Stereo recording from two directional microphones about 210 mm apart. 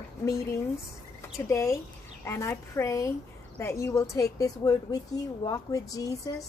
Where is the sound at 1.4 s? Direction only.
15° left (ahead or behind).